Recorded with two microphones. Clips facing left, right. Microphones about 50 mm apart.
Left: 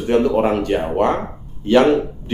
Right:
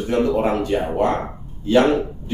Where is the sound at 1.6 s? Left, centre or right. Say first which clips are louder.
Left 2 dB; left.